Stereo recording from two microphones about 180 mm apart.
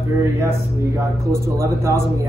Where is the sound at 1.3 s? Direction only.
15° right (ahead or behind).